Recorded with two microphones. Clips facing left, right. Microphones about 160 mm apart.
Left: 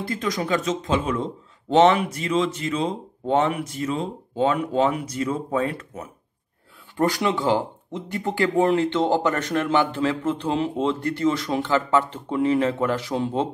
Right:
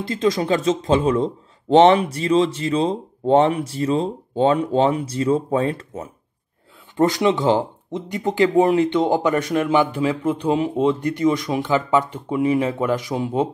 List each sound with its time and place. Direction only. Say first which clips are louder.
0.0 s speech: right 6 dB; 25° right (ahead or behind)